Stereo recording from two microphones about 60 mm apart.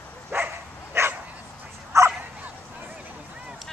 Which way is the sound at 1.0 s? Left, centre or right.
Right.